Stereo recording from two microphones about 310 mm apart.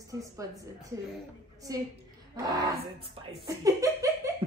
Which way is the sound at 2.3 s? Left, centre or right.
Centre.